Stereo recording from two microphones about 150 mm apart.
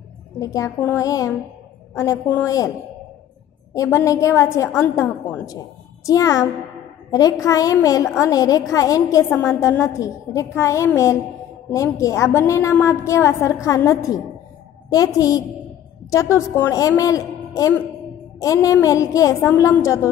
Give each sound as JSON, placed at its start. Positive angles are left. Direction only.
{"t": 0.4, "sound": "a woman's voice", "side_deg": 20}
{"t": 3.7, "sound": "a woman's voice", "side_deg": 20}
{"t": 18.4, "sound": "a woman's voice", "side_deg": 25}